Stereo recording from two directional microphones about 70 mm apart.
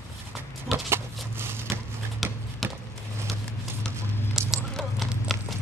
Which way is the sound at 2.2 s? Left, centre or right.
Centre.